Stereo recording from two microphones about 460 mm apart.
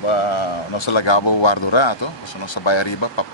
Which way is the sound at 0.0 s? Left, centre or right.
Left.